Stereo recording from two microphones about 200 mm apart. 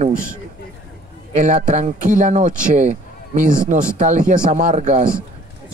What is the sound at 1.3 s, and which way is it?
A man's voice, 35° right (ahead or behind).